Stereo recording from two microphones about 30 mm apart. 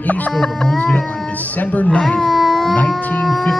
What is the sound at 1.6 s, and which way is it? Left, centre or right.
Speech, left.